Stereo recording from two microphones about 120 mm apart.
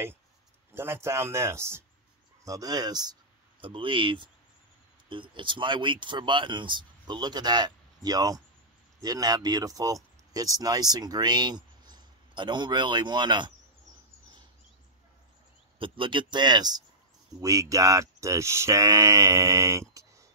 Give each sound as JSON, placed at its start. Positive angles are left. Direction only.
{"t": 0.7, "sound": "speech", "side_deg": -20}
{"t": 15.8, "sound": "speech", "side_deg": -45}